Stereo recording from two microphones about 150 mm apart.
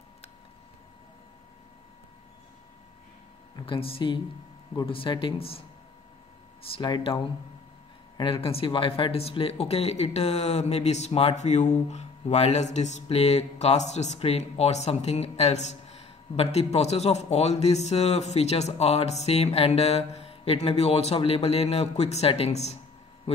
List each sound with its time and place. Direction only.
3.5 s speech: 35° left (ahead or behind)
6.7 s speech: 35° left (ahead or behind)